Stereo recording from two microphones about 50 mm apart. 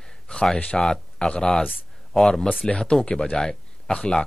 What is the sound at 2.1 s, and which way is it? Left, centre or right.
A man's voice, centre.